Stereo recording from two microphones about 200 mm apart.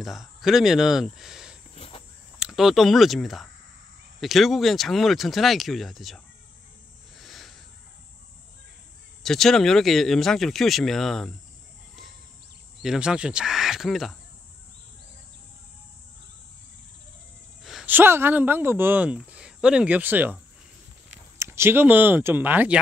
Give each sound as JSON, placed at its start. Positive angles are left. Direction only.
{"t": 0.0, "sound": "speech", "side_deg": 0}
{"t": 1.8, "sound": "cricket", "side_deg": 30}
{"t": 2.3, "sound": "speech", "side_deg": 0}
{"t": 7.2, "sound": "cricket", "side_deg": 0}
{"t": 9.2, "sound": "speech", "side_deg": 0}
{"t": 12.8, "sound": "speech", "side_deg": -5}
{"t": 17.6, "sound": "speech", "side_deg": -5}
{"t": 21.4, "sound": "speech", "side_deg": -10}